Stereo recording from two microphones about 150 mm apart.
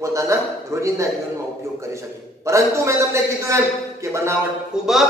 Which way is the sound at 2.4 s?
20° right (ahead or behind).